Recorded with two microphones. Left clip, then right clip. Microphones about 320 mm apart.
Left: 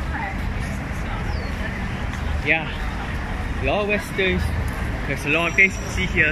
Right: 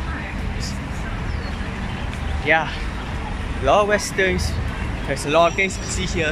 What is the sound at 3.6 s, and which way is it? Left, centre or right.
Speech, right.